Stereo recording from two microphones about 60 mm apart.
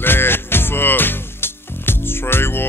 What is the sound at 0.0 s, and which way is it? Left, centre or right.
Music, left.